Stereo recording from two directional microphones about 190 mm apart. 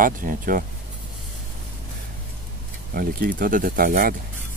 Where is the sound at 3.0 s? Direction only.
50° right (ahead or behind).